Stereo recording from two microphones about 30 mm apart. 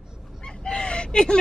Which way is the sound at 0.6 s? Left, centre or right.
Left.